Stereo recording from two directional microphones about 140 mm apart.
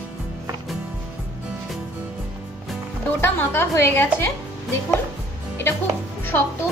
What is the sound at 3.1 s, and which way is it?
A woman's voice, 15° left (ahead or behind).